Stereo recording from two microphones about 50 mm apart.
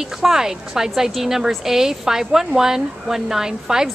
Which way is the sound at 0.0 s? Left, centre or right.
Centre.